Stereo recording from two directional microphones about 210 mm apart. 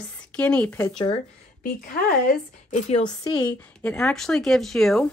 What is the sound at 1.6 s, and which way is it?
Speech, 45° left (ahead or behind).